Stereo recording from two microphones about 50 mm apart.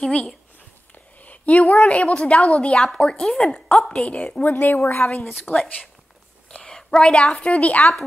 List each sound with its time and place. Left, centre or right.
1.2 s a woman's voice: left
4.5 s a woman's voice: left
5.5 s a woman's voice: centre